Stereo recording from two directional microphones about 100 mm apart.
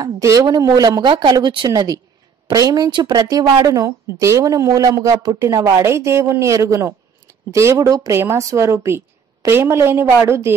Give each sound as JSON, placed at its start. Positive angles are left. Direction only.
{"t": 0.0, "sound": "speech", "side_deg": -40}
{"t": 1.7, "sound": "a woman's voice", "side_deg": -40}